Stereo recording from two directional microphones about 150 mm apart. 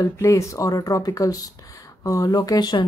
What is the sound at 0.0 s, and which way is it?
A woman's voice, 20° left (ahead or behind).